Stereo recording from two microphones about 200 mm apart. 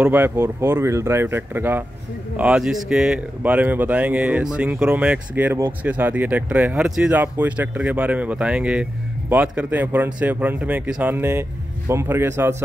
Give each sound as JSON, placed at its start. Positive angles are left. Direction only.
{"t": 0.0, "sound": "speech", "side_deg": -10}